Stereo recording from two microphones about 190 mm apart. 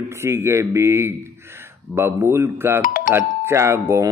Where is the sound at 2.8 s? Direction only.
45° left (ahead or behind).